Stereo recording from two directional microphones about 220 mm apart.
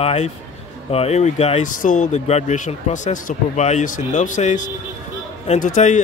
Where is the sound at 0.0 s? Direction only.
25° left (ahead or behind).